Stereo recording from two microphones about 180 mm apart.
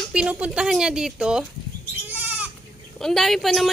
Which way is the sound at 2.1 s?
10° right (ahead or behind).